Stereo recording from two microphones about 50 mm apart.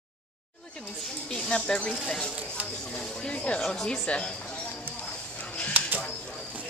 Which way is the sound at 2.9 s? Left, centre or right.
Centre.